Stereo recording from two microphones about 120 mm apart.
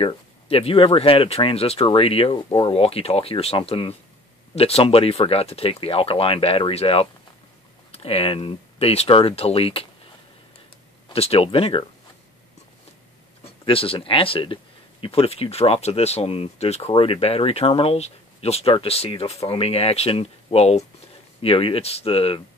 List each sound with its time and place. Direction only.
0.0 s speech: 55° left (ahead or behind)
11.1 s speech: 55° left (ahead or behind)
13.7 s speech: 50° left (ahead or behind)
21.4 s speech: 50° left (ahead or behind)